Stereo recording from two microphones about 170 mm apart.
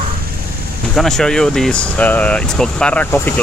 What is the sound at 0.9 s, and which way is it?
Speech, centre (ahead or behind).